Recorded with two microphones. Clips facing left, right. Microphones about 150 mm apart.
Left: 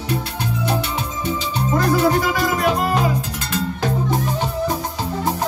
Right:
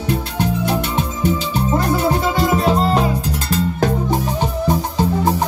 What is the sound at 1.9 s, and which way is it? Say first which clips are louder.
Music: even; 25° right (ahead or behind).